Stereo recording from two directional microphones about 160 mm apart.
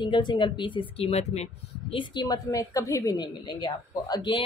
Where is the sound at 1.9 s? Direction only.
30° left (ahead or behind).